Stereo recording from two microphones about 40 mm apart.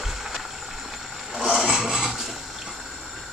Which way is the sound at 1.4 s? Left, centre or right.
Centre.